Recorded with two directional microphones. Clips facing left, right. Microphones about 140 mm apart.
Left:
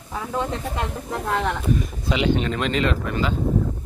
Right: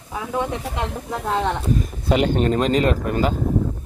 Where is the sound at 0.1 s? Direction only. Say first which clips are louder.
Right 2 dB; 10° right (ahead or behind).